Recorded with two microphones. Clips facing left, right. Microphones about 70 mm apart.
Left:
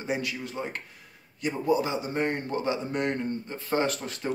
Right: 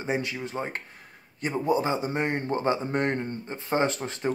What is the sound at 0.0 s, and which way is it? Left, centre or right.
A man's voice, right.